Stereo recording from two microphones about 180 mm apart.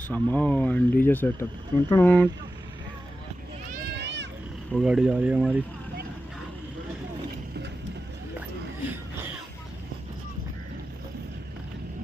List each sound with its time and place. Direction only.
0.1 s speech: 5° left (ahead or behind)
3.7 s a sound: 65° right (ahead or behind)
4.7 s speech: 5° right (ahead or behind)